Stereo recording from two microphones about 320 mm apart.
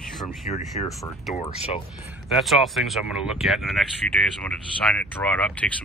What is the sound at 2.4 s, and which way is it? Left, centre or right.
Speech, centre.